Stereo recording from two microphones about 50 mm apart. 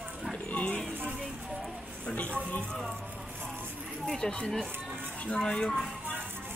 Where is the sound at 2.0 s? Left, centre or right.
Left.